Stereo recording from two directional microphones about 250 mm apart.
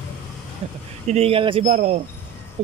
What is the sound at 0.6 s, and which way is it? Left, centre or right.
Speech, right.